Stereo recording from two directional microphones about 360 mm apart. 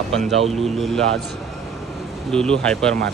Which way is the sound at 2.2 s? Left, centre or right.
Centre.